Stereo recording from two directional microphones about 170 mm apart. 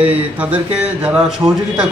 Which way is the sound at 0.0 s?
10° right (ahead or behind).